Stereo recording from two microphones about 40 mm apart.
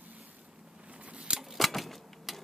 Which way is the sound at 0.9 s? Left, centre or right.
Right.